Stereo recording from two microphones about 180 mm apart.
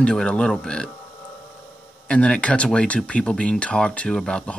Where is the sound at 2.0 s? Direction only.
5° left (ahead or behind).